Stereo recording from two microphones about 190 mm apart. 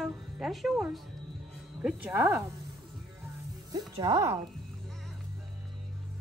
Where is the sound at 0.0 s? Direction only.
Centre (ahead or behind).